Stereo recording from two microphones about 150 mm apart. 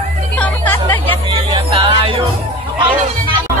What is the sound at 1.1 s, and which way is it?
Music, 35° right (ahead or behind).